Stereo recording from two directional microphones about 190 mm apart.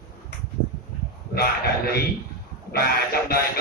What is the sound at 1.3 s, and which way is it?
Speech, 55° left (ahead or behind).